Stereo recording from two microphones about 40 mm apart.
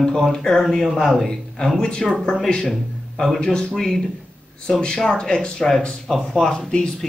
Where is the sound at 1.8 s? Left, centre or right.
Left.